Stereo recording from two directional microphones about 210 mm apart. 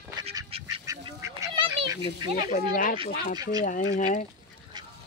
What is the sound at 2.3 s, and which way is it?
Speech, 40° left (ahead or behind).